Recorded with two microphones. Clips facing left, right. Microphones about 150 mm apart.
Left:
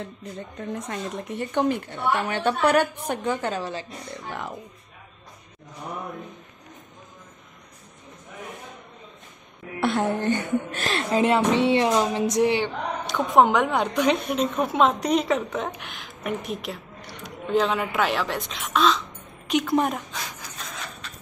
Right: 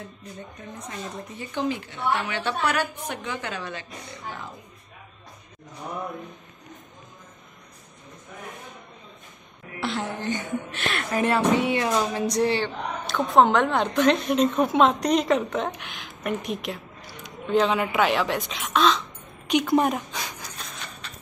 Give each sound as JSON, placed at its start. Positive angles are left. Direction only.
{"t": 0.8, "sound": "speech", "side_deg": 60}
{"t": 9.8, "sound": "speech", "side_deg": 55}
{"t": 10.8, "sound": "a woman's voice", "side_deg": 30}